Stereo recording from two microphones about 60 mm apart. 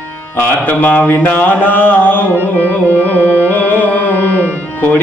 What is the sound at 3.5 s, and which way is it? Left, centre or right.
Music, left.